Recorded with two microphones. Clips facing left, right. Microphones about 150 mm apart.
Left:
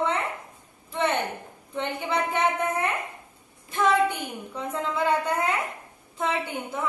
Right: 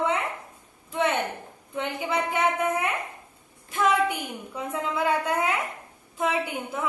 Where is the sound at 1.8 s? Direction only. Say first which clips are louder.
Even; 5° right (ahead or behind).